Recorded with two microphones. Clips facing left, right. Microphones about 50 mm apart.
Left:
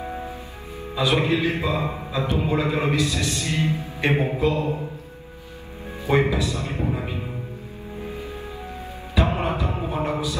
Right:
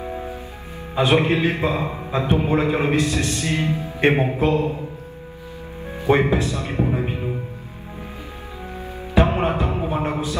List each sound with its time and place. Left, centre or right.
0.9 s a man's voice: right
6.0 s a man's voice: right
6.9 s music: right
9.1 s music: right